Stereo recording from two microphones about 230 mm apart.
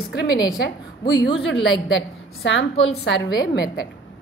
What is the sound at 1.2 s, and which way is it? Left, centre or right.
Speech, left.